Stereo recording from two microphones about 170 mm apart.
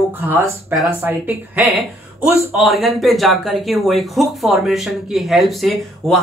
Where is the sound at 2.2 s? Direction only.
Centre (ahead or behind).